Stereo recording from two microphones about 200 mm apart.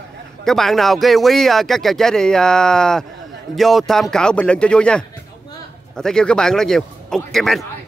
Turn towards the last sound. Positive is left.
turn(degrees=0)  # may be behind; listen again after turning